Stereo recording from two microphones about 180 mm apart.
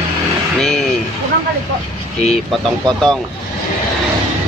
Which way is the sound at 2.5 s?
Centre (ahead or behind).